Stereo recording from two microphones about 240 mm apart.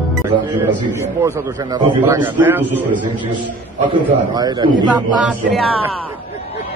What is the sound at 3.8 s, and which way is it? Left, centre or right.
A man's voice, centre.